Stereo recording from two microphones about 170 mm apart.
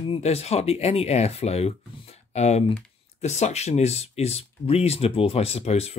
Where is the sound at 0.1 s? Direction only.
40° left (ahead or behind).